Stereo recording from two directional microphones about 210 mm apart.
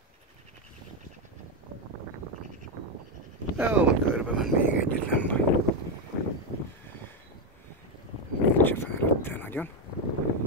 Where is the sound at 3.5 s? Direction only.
5° right (ahead or behind).